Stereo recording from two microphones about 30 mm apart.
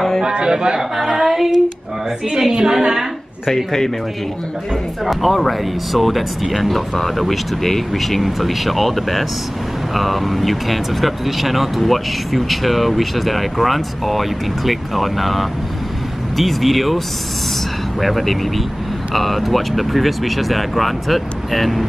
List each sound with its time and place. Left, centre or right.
0.2 s a man's voice: right
1.2 s female singing: centre
2.5 s a woman's voice: right
5.0 s speech: centre
18.0 s speech: centre